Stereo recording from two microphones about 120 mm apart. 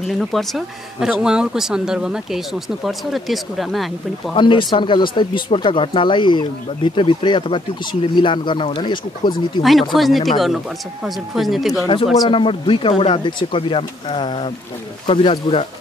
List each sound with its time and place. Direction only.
0.0 s speech: centre (ahead or behind)
4.4 s speech: 40° left (ahead or behind)
9.6 s speech: centre (ahead or behind)
12.3 s speech: 45° left (ahead or behind)